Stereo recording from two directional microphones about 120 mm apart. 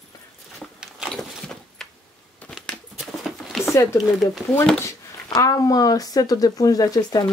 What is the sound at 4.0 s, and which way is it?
Speech, centre (ahead or behind).